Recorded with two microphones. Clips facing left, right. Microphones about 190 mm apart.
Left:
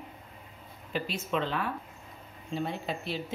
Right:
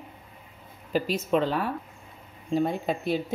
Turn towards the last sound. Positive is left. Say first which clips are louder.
# right 7 dB
turn(degrees=-50)  # may be behind; listen again after turning